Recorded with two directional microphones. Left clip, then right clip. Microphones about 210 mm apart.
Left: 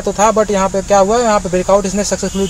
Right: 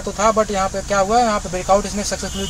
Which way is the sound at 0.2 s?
50° left (ahead or behind).